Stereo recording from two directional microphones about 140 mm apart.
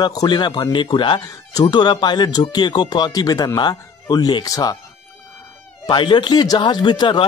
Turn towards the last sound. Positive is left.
turn(degrees=35)  # may be behind; listen again after turning